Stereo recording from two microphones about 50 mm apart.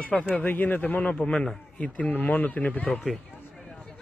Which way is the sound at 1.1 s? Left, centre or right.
Centre.